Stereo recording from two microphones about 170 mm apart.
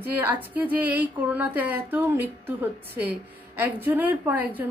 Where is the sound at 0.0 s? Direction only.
10° right (ahead or behind).